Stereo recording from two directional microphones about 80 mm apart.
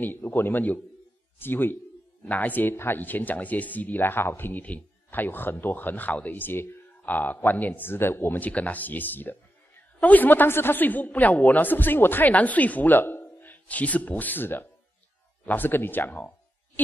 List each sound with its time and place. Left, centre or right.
0.0 s speech: left